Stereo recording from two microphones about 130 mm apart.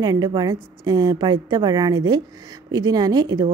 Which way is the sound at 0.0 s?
30° right (ahead or behind).